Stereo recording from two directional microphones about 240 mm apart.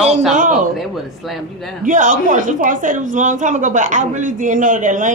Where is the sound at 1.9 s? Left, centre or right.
Right.